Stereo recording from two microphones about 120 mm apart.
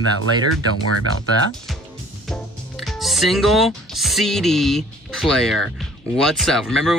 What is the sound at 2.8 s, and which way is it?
Speech, centre (ahead or behind).